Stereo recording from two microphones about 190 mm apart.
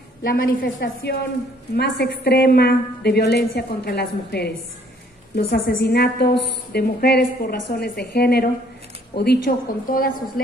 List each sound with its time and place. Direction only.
0.2 s a woman's voice: 50° left (ahead or behind)